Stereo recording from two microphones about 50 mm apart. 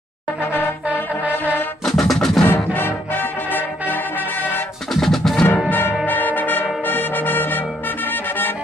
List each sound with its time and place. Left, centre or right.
0.4 s music: left
0.8 s music: right
1.9 s music: centre
2.4 s music: left
5.0 s music: centre
5.7 s music: left